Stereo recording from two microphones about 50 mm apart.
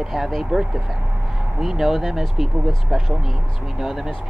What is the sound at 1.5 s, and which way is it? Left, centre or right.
Speech, centre.